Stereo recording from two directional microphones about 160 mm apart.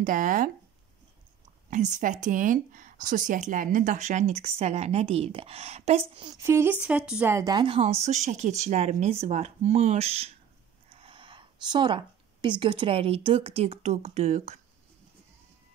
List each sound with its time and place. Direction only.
0.0 s speech: 55° right (ahead or behind)
1.7 s speech: 55° right (ahead or behind); by 6.4 s 30° right (ahead or behind)
6.4 s speech: 15° right (ahead or behind)
7.3 s speech: 25° right (ahead or behind); by 14.6 s 45° right (ahead or behind)